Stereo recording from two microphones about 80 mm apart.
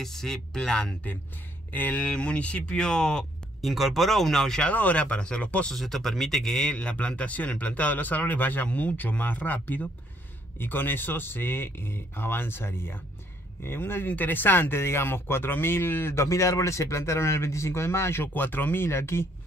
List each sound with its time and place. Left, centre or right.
0.0 s speech: centre
1.7 s speech: centre
3.6 s speech: centre
5.8 s speech: centre; by 19.2 s left